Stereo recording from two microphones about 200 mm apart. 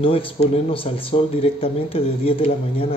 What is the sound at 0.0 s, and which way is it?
Speech, 25° left (ahead or behind).